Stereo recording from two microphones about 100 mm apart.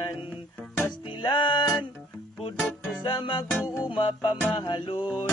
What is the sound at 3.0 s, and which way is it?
Mantra, 50° left (ahead or behind).